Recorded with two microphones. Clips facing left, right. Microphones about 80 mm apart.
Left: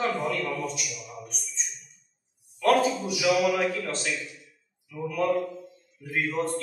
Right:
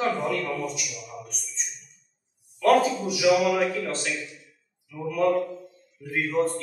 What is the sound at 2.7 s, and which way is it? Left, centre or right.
A man's voice, centre.